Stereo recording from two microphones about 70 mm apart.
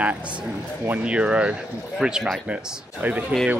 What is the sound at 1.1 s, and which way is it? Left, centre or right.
A man's voice, centre.